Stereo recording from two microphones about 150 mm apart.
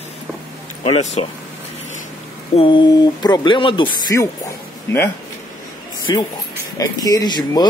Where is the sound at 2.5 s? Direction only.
35° left (ahead or behind).